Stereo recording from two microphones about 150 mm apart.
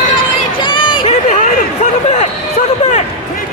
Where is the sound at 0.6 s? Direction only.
30° left (ahead or behind).